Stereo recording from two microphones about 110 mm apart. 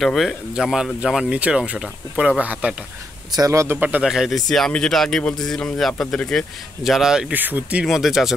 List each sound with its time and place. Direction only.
0.0 s speech: centre (ahead or behind)
3.3 s speech: 35° right (ahead or behind)
3.7 s speech: 15° right (ahead or behind)
7.8 s speech: 5° right (ahead or behind)